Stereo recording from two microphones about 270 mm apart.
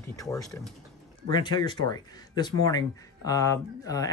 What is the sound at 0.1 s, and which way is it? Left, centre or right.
Speech, centre.